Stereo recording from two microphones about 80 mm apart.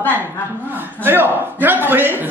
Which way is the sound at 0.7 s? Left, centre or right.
Right.